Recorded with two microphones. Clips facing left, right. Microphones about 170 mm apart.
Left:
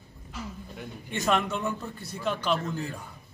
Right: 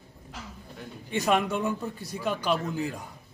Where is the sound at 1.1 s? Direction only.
10° right (ahead or behind).